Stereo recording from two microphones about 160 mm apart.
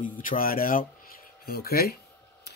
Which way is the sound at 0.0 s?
55° left (ahead or behind).